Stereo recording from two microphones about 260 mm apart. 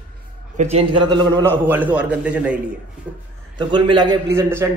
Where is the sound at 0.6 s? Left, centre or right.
Right; by 2.5 s centre.